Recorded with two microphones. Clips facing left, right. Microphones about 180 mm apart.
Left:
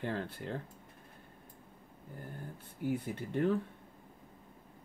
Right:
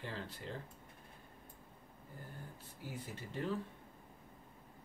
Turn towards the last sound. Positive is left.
turn(degrees=60)  # may be behind; listen again after turning